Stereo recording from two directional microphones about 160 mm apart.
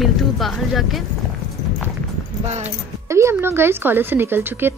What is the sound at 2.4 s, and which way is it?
Speech, 45° right (ahead or behind).